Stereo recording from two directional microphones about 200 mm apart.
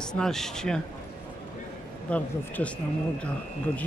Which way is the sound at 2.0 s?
5° left (ahead or behind).